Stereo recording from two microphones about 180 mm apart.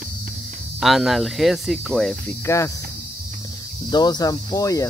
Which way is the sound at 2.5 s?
15° left (ahead or behind).